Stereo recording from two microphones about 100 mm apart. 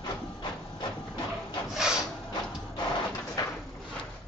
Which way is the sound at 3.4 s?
40° left (ahead or behind).